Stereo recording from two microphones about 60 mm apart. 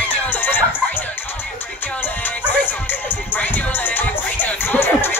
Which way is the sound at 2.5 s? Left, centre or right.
Left.